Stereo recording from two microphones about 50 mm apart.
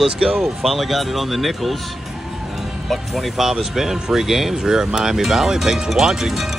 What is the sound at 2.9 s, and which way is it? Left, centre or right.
Speech, centre.